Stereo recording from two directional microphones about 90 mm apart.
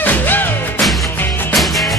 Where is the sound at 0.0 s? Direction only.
20° left (ahead or behind).